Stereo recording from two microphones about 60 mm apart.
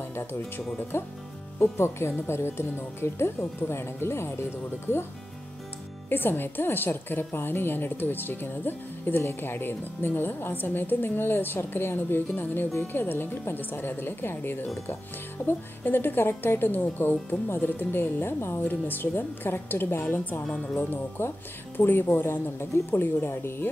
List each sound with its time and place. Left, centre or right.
0.1 s speech: left
6.0 s a woman's voice: left